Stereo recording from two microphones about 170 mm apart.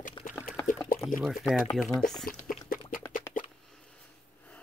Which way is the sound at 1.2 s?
Centre (ahead or behind).